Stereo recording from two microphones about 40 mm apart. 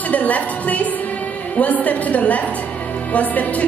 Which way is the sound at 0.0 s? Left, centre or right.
Left.